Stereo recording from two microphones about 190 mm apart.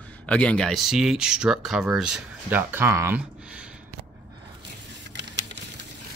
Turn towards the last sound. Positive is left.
turn(degrees=-65)  # may be behind; listen again after turning